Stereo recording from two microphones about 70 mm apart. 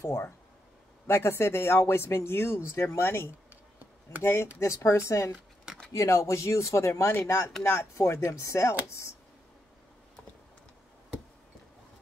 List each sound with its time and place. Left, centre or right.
0.0 s speech: left
4.6 s speech: left
8.0 s speech: left